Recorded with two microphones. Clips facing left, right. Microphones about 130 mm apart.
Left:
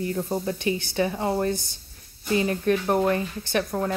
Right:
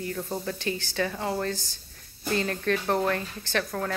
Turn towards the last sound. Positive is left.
turn(degrees=20)  # may be behind; listen again after turning